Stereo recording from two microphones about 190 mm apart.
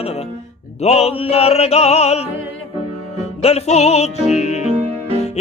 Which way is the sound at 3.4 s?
35° left (ahead or behind).